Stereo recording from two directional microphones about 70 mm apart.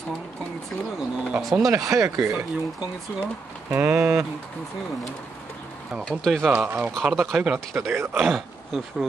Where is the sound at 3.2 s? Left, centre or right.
Right.